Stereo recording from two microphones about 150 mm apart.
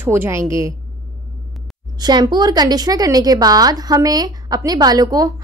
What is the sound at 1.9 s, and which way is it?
A woman's voice, 25° right (ahead or behind).